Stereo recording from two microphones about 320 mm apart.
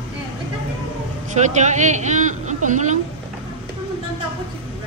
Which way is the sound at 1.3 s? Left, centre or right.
Right.